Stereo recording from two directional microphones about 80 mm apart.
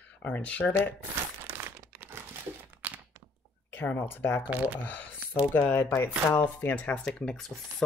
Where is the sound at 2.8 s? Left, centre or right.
Right.